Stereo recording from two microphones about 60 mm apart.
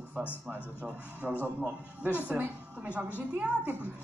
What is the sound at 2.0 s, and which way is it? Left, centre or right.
A man's voice, right.